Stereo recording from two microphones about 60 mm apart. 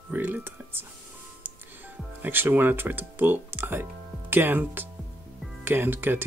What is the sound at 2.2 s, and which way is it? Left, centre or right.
Speech, right.